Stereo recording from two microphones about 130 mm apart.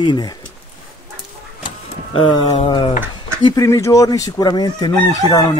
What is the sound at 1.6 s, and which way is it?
Speech, 40° left (ahead or behind).